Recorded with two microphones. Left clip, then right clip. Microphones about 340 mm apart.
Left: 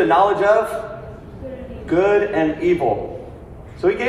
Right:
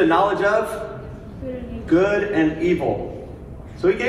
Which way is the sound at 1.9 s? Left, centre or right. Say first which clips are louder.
Left 2 dB; left.